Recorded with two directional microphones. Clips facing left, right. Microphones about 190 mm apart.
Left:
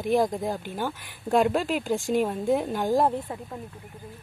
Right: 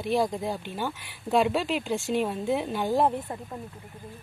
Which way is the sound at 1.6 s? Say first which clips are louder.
Left 1 dB; 45° left (ahead or behind).